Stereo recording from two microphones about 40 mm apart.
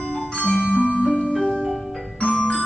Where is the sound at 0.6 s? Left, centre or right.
Centre.